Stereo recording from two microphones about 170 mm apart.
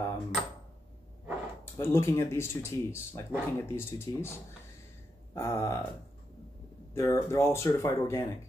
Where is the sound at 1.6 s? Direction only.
15° left (ahead or behind).